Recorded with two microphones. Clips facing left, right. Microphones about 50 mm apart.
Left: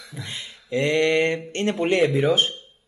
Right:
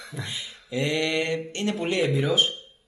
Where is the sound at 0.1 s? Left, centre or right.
Centre.